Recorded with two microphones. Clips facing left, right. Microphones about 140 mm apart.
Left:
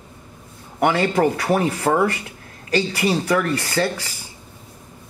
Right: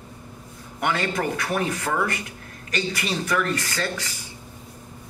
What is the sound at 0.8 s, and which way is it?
A man's voice, 30° left (ahead or behind).